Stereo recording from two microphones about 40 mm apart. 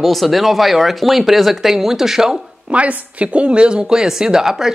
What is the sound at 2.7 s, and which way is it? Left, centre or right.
A woman's voice, right.